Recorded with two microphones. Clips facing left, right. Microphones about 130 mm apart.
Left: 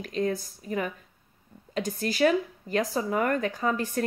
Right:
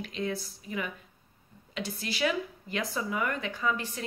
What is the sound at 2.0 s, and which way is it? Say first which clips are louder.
Speech: left 7 dB; 45° left (ahead or behind).